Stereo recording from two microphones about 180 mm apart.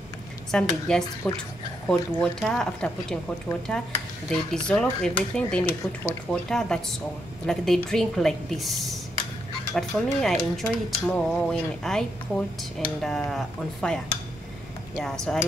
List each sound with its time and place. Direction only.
0.5 s speech: 5° left (ahead or behind)
4.3 s speech: 5° left (ahead or behind)